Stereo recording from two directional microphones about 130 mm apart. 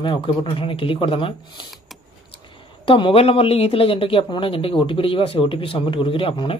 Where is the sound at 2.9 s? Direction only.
45° left (ahead or behind).